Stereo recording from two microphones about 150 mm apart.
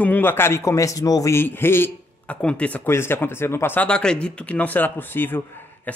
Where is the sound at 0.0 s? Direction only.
15° left (ahead or behind).